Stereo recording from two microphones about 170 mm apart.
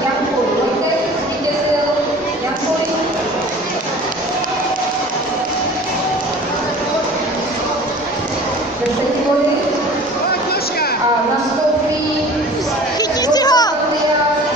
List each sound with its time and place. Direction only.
13.3 s children playing: 25° left (ahead or behind)